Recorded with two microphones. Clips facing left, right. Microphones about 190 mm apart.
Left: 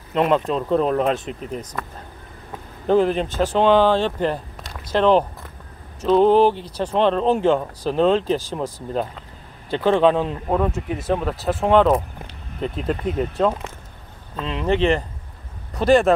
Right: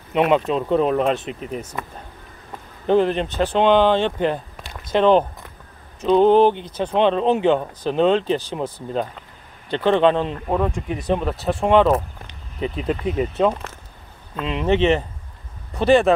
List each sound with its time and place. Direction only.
0.1 s speech: 5° right (ahead or behind)
2.9 s speech: 5° left (ahead or behind)
6.5 s speech: 35° left (ahead or behind)
6.8 s speech: centre (ahead or behind)
9.7 s speech: 10° left (ahead or behind)